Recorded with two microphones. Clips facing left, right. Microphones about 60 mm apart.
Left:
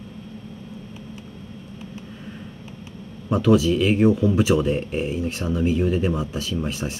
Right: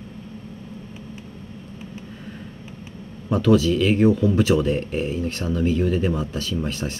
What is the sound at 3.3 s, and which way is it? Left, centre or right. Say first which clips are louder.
Speech: even; centre.